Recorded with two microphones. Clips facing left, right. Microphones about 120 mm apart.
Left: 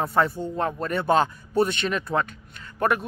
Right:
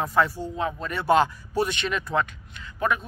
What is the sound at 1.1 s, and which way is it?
Speech, 35° left (ahead or behind).